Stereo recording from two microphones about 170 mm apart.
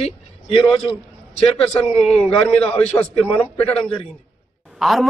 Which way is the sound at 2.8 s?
10° left (ahead or behind).